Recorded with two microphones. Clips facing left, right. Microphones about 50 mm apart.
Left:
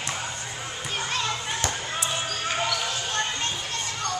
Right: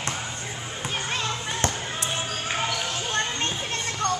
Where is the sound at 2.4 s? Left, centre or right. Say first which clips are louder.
Left 1 dB; right.